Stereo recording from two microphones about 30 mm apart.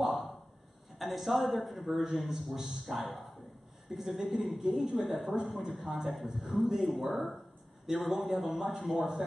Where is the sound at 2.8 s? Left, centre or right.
Centre.